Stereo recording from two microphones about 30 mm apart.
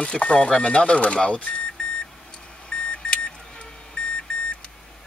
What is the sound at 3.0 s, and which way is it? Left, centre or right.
Beep, left.